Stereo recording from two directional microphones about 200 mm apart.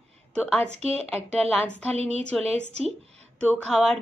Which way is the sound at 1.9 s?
30° right (ahead or behind).